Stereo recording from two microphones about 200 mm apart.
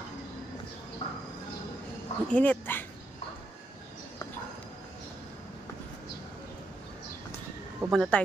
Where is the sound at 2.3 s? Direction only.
10° left (ahead or behind).